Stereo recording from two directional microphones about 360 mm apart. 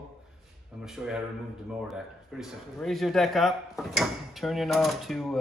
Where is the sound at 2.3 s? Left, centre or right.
Centre.